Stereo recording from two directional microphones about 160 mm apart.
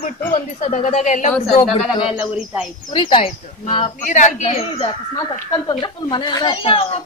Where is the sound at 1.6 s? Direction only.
Centre (ahead or behind).